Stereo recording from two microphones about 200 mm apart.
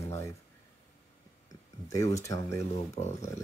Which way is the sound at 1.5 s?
15° left (ahead or behind).